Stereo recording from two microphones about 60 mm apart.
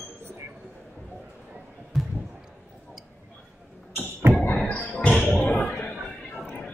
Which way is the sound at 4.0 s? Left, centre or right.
Right.